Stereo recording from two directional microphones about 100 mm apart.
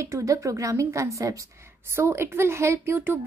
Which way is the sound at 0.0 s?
30° right (ahead or behind).